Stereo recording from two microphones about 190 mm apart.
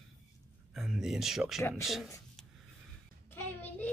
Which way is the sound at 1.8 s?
Centre (ahead or behind).